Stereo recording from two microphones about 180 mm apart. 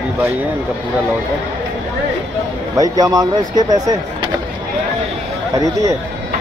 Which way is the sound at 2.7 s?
20° right (ahead or behind).